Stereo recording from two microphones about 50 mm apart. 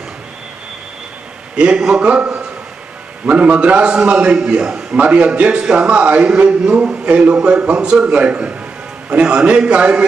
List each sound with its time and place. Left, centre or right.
1.5 s a man's voice: right